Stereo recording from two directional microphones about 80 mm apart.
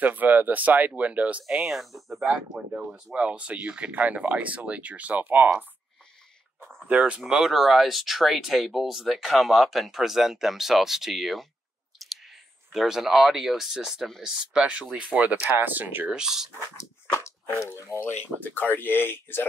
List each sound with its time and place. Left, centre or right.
0.0 s speech: right
1.5 s speech: centre
3.2 s speech: centre
6.9 s speech: centre
16.1 s speech: centre
17.6 s speech: left